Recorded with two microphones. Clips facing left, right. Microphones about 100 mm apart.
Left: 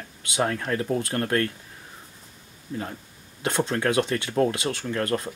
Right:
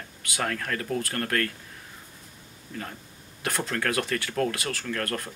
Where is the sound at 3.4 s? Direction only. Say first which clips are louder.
Left 5 dB; 25° left (ahead or behind).